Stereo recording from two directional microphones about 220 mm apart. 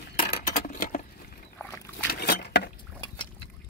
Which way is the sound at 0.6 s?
35° left (ahead or behind).